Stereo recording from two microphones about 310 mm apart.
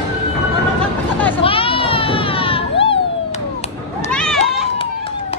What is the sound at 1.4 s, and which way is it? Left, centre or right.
Children playing, centre.